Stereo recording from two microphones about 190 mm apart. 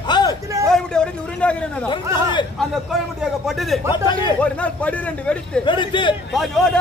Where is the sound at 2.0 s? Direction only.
15° right (ahead or behind).